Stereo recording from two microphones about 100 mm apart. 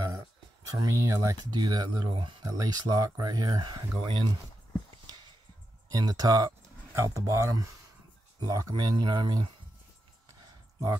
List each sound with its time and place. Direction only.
0.7 s speech: 35° right (ahead or behind)
5.9 s speech: 40° right (ahead or behind)